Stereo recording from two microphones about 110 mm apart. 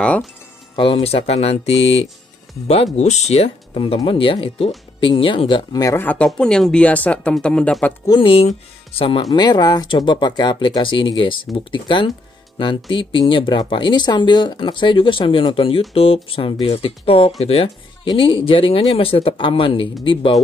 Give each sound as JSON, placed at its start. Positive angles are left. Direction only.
{"t": 0.9, "sound": "speech", "side_deg": 70}
{"t": 2.7, "sound": "speech", "side_deg": 80}
{"t": 5.7, "sound": "speech", "side_deg": 35}
{"t": 5.9, "sound": "speech", "side_deg": 15}
{"t": 8.2, "sound": "speech", "side_deg": 55}
{"t": 9.3, "sound": "speech", "side_deg": 40}
{"t": 18.0, "sound": "speech", "side_deg": 50}